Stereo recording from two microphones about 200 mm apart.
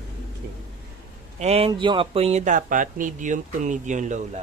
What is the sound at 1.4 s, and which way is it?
A man's voice, 30° right (ahead or behind).